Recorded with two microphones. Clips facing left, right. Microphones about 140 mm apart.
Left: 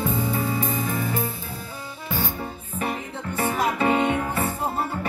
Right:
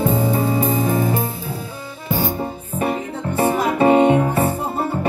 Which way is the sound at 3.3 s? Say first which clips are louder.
Right 6 dB; 25° right (ahead or behind).